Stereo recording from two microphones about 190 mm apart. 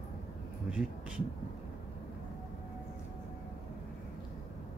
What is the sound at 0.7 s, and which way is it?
Speech, 5° right (ahead or behind).